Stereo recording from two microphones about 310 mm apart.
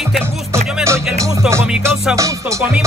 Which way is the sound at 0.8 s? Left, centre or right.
Centre.